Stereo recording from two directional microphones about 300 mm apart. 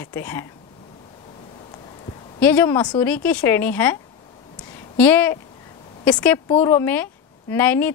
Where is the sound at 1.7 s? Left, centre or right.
Centre.